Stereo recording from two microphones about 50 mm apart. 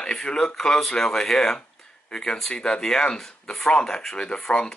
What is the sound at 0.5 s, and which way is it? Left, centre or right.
Speech, centre.